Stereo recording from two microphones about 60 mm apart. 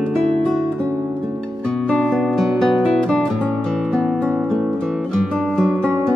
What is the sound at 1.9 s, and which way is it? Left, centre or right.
Music, centre.